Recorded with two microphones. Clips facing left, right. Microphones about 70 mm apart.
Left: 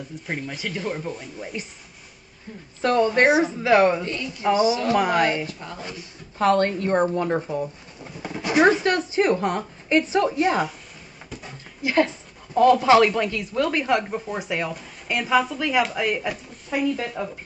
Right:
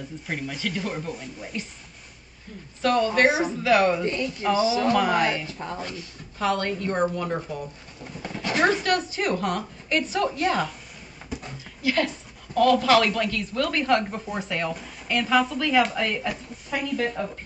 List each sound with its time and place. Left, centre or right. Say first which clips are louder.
0.6 s a woman's voice: left 1 dB; centre
2.8 s speech: left 2 dB; left
4.0 s a woman's voice: right 3 dB; right
4.4 s speech: left 3 dB; left
5.5 s a woman's voice: right 3 dB; right
6.3 s a woman's voice: left 6 dB; left
8.2 s speech: left 4 dB; centre
11.8 s a woman's voice: left 3 dB; left